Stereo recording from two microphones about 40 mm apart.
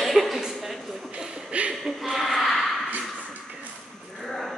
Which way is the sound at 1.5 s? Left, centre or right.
Right.